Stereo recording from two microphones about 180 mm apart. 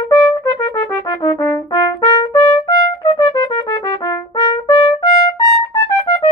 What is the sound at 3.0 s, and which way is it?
Trumpet, 20° left (ahead or behind).